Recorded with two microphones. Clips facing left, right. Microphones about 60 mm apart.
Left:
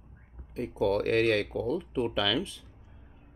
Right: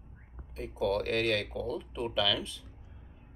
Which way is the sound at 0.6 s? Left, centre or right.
Left.